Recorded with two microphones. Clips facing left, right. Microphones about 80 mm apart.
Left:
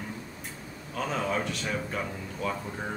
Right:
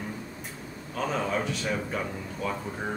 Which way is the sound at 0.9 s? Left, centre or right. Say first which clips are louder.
Right 1 dB; centre.